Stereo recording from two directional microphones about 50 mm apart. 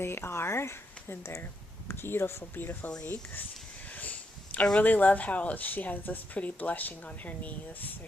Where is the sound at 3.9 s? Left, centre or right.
Left.